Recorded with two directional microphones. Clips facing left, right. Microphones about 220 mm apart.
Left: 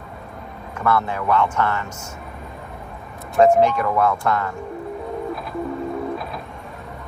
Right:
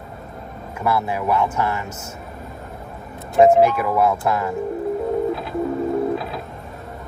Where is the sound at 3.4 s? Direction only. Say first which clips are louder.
Right 2 dB; 5° right (ahead or behind).